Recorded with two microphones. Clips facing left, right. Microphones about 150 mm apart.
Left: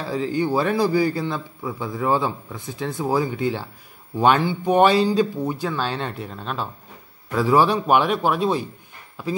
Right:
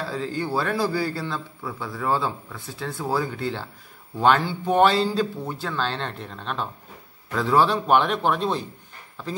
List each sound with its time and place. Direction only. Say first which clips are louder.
0.0 s a man's voice: left 5 dB; 15° left (ahead or behind)